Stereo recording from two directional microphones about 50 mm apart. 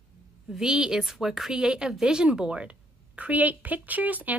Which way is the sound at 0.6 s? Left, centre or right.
Centre.